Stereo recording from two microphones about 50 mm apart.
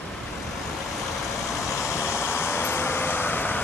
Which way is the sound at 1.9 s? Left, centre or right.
Left.